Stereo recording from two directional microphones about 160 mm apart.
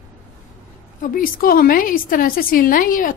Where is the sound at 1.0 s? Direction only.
60° left (ahead or behind).